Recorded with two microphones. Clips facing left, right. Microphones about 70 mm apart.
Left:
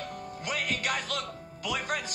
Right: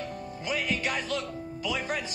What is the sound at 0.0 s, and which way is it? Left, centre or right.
Speech, left.